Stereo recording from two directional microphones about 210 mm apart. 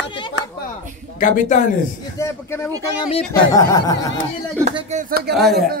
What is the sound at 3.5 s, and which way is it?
Speech, 15° left (ahead or behind).